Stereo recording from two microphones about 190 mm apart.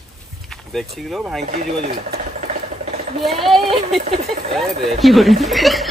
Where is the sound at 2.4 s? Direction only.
35° right (ahead or behind).